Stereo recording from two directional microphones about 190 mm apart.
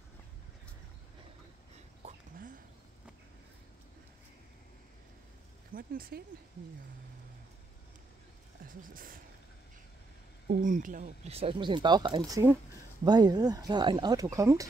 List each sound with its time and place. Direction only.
2.0 s a sound: 45° right (ahead or behind)
5.8 s speech: 50° right (ahead or behind)
8.6 s speech: 50° right (ahead or behind)
10.5 s speech: 45° right (ahead or behind); by 14.7 s 15° right (ahead or behind)